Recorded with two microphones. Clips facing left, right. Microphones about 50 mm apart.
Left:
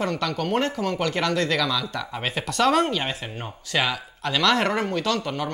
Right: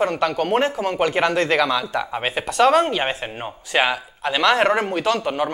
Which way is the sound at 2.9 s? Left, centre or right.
Right.